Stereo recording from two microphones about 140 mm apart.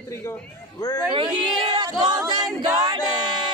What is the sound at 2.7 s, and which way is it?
Music, 25° right (ahead or behind).